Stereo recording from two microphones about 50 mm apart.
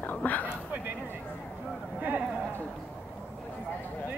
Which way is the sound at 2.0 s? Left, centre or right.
Right.